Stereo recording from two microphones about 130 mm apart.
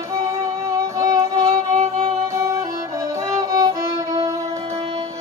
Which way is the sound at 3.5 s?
25° right (ahead or behind).